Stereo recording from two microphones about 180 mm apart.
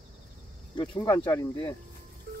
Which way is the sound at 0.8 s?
20° left (ahead or behind).